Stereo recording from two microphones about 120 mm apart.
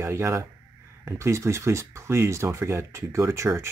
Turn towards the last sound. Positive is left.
turn(degrees=-25)  # may be behind; listen again after turning